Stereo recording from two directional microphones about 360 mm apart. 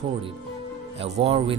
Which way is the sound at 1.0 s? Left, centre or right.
Centre.